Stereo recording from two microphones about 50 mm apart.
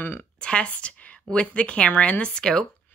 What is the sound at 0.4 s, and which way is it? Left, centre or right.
A woman's voice, left.